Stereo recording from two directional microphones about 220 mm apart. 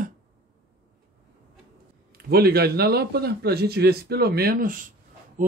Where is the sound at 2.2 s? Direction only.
45° right (ahead or behind).